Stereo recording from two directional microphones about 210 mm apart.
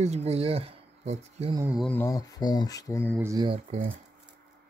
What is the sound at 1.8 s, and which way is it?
Speech, 10° left (ahead or behind).